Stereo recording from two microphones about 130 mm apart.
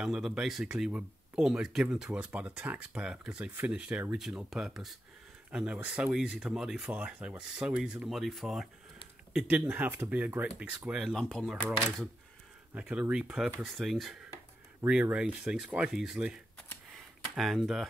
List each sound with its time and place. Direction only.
0.0 s speech: 5° right (ahead or behind)
9.7 s speech: 15° right (ahead or behind)
10.9 s speech: centre (ahead or behind)
12.7 s speech: 5° right (ahead or behind)
16.9 s a sound: centre (ahead or behind)